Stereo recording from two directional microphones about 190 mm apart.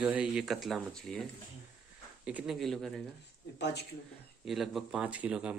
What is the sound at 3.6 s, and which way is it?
Speech, 65° left (ahead or behind).